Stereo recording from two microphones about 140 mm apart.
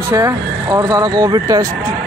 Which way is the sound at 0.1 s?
25° right (ahead or behind).